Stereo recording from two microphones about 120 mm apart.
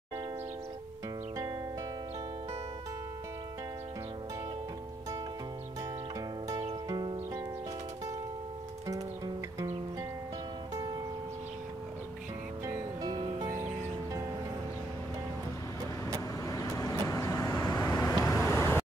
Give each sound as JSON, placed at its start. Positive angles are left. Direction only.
{"t": 6.5, "sound": "music", "side_deg": -30}
{"t": 8.8, "sound": "music", "side_deg": -30}
{"t": 10.7, "sound": "music", "side_deg": -30}
{"t": 13.0, "sound": "music", "side_deg": -35}
{"t": 16.4, "sound": "vehicle", "side_deg": 25}